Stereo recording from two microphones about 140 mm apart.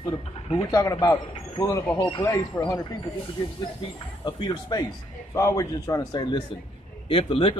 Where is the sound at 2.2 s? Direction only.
20° left (ahead or behind).